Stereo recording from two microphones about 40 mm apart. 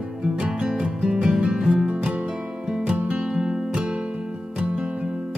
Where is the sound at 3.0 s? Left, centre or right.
Right.